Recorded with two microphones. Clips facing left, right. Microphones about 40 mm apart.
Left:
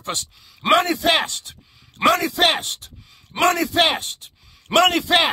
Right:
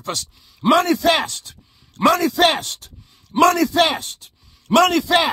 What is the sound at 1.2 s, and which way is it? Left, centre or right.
Speech, left.